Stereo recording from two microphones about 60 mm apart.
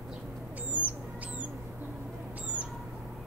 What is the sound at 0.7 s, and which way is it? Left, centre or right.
Owl, right.